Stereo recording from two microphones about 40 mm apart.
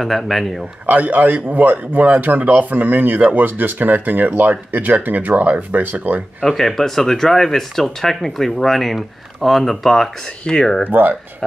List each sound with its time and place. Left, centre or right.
0.0 s speech: centre
0.8 s speech: right
6.4 s speech: centre
10.4 s speech: centre
10.9 s speech: right